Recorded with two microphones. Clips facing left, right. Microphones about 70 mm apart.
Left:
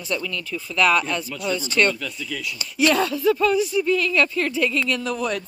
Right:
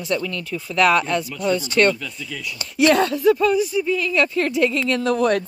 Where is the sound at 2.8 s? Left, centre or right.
Right.